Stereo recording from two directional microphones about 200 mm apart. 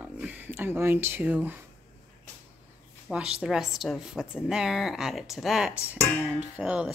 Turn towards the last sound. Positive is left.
turn(degrees=-5)  # may be behind; listen again after turning